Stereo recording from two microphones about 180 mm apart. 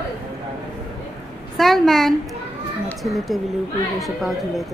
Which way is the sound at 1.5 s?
Centre (ahead or behind).